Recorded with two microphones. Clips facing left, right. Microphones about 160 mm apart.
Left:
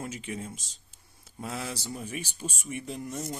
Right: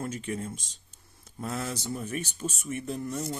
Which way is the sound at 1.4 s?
5° left (ahead or behind).